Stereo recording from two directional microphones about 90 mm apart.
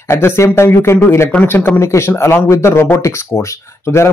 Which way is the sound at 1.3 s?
20° left (ahead or behind).